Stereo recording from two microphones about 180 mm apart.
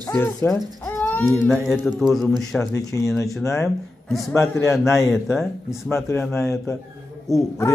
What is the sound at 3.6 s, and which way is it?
Speech, centre (ahead or behind).